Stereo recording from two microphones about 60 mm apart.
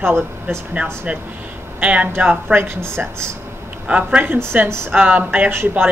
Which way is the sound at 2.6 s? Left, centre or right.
Right.